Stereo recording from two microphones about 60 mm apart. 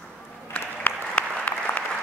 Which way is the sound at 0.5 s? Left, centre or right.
Left.